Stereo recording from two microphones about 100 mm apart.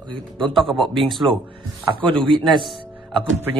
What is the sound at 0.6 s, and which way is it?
Speech, centre (ahead or behind).